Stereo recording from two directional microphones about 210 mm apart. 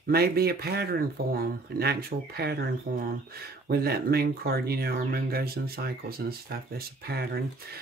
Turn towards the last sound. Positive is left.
turn(degrees=-50)  # may be behind; listen again after turning